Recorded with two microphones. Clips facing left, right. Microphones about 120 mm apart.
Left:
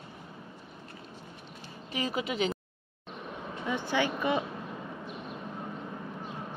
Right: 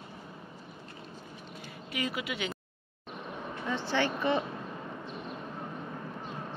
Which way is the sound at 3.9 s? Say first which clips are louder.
Even; 10° left (ahead or behind).